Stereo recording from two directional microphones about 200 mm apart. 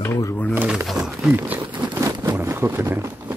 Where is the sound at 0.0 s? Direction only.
15° left (ahead or behind).